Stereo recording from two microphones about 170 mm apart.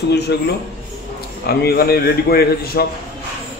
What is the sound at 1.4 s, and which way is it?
A man's voice, 65° left (ahead or behind).